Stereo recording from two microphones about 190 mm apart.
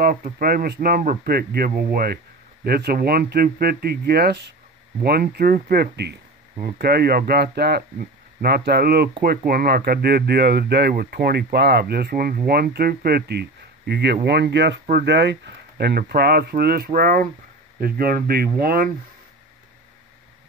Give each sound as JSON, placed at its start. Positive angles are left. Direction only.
{"t": 0.0, "sound": "speech", "side_deg": -50}